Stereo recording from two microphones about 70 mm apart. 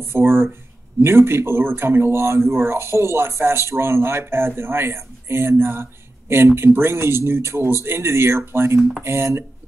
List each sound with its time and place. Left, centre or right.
0.0 s speech: right